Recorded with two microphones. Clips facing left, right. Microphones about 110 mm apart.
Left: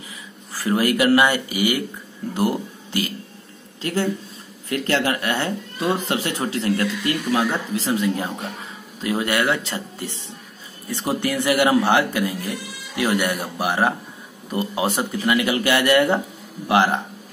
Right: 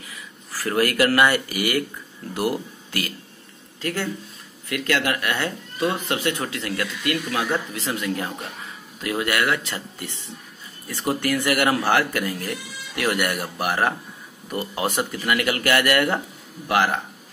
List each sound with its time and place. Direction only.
0.5 s speech: 20° left (ahead or behind)
11.1 s speech: 25° left (ahead or behind)